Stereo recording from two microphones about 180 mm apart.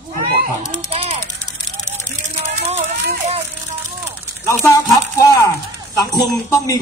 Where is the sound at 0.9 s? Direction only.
35° right (ahead or behind).